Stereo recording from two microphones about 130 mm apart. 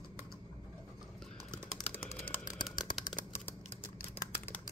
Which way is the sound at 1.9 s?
15° left (ahead or behind).